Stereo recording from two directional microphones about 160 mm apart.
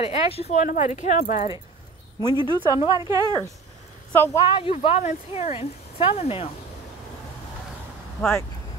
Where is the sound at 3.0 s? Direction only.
20° right (ahead or behind).